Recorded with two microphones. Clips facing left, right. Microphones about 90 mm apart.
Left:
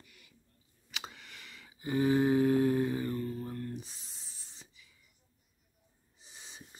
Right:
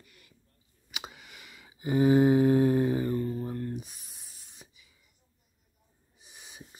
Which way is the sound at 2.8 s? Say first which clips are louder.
Right 5 dB; 20° right (ahead or behind).